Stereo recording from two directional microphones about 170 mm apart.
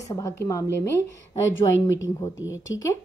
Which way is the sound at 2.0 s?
20° left (ahead or behind).